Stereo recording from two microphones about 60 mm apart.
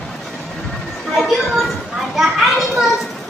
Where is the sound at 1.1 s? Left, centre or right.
Centre.